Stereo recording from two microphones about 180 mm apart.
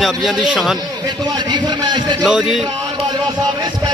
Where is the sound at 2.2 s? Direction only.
5° right (ahead or behind).